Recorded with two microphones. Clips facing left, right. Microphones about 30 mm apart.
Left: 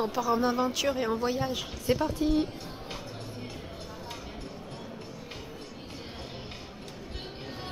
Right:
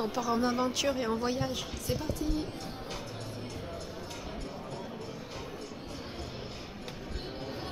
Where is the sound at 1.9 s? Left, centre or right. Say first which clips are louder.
Left 8 dB; left.